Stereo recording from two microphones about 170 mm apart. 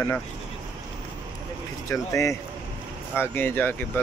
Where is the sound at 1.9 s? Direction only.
15° left (ahead or behind).